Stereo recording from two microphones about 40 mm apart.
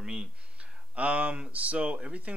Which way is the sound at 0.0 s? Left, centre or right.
Right.